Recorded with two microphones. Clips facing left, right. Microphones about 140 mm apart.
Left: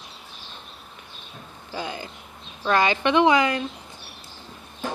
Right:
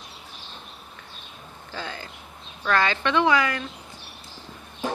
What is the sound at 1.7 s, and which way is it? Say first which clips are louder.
A woman's voice: left 4 dB; 15° left (ahead or behind).